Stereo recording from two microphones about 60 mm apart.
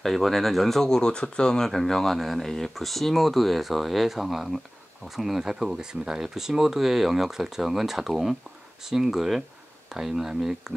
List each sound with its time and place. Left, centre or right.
0.0 s speech: centre